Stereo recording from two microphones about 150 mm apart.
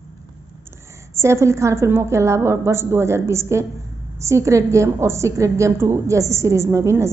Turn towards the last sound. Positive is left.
turn(degrees=-20)  # may be behind; listen again after turning